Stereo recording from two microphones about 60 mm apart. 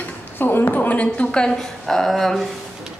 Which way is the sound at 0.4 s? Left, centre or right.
Left.